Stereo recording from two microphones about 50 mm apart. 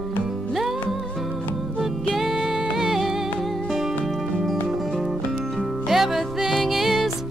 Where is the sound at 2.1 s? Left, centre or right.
Centre.